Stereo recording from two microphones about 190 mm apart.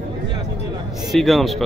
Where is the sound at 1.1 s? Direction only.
Centre (ahead or behind).